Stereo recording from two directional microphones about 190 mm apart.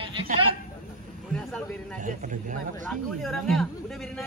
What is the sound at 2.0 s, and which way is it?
Speech, 40° right (ahead or behind).